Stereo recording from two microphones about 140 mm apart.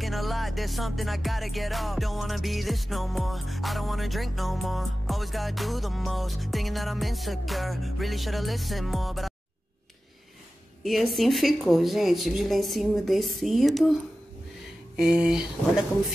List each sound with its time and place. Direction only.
0.0 s music: centre (ahead or behind)
10.8 s music: centre (ahead or behind)
15.0 s music: 5° right (ahead or behind)